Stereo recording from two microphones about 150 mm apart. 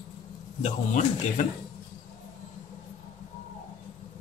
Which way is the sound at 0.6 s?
50° left (ahead or behind).